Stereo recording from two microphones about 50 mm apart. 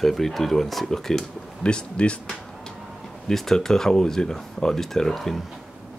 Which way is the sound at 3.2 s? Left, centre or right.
Centre.